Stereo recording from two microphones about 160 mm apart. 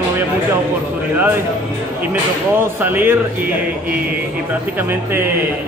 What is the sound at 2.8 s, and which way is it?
Speech, 10° right (ahead or behind).